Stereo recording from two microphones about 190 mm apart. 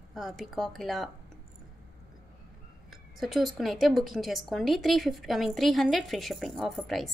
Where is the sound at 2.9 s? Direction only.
Centre (ahead or behind).